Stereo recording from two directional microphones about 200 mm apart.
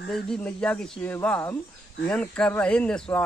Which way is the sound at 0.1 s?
5° left (ahead or behind).